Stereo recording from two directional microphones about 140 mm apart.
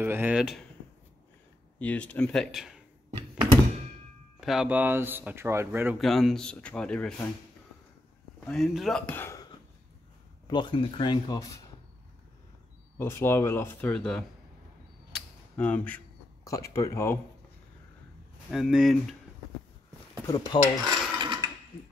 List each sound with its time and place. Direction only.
0.0 s speech: 15° right (ahead or behind)
1.8 s speech: 10° left (ahead or behind)
4.4 s speech: 5° right (ahead or behind)
5.9 s speech: centre (ahead or behind)
8.5 s speech: centre (ahead or behind)
9.1 s a sound: 15° left (ahead or behind)
10.4 s speech: 35° left (ahead or behind)
12.9 s speech: 20° left (ahead or behind)
15.5 s speech: 10° left (ahead or behind)
16.4 s speech: 25° left (ahead or behind)
18.5 s speech: 5° right (ahead or behind)
20.2 s speech: 25° left (ahead or behind)
20.8 s a sound: 30° right (ahead or behind)